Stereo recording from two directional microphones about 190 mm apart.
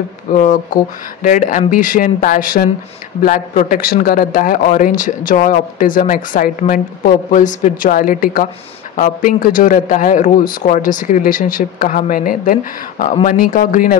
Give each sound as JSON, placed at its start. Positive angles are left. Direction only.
{"t": 0.3, "sound": "a man's voice", "side_deg": 40}